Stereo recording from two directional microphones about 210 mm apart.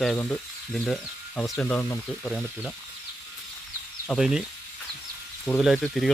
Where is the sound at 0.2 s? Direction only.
5° left (ahead or behind).